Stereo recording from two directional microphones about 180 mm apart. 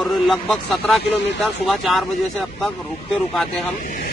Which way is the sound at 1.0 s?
75° left (ahead or behind).